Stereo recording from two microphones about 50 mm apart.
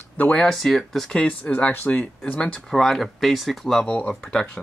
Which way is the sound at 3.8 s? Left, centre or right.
Left.